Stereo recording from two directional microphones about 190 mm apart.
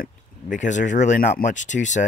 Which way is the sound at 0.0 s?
40° left (ahead or behind).